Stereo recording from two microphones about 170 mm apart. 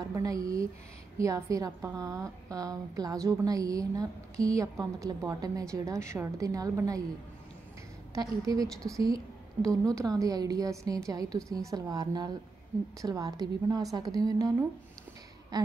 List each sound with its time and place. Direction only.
0.0 s a woman's voice: 20° right (ahead or behind)
8.1 s a woman's voice: 20° right (ahead or behind)
15.5 s a sound: 25° right (ahead or behind)